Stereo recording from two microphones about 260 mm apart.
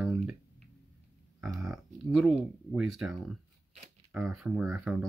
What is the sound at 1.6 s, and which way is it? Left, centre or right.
Speech, centre.